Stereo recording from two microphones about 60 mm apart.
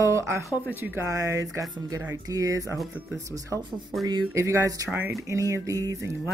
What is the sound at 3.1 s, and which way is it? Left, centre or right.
Speech, right.